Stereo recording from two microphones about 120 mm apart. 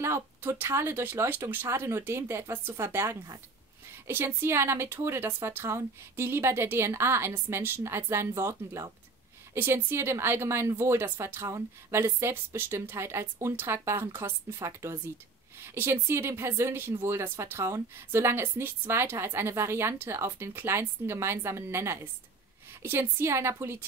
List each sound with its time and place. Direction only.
0.0 s speech: 20° right (ahead or behind)